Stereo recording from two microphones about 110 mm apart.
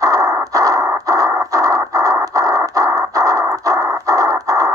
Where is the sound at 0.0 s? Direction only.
30° right (ahead or behind).